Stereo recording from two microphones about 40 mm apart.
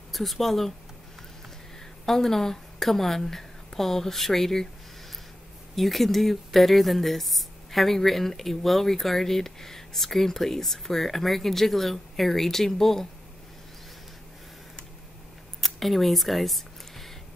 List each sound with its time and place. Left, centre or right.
0.1 s speech: centre
2.0 s a woman's voice: centre
5.8 s speech: centre
15.8 s speech: centre